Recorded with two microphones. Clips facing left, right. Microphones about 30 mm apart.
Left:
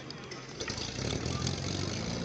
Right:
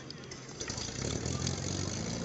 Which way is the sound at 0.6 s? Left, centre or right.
Left.